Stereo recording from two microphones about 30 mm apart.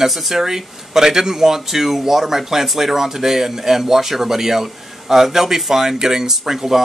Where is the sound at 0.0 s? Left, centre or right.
Centre.